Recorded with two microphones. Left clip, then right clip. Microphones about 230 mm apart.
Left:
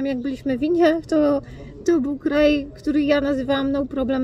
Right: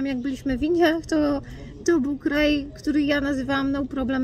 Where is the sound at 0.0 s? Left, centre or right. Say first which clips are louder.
Left 3 dB; centre.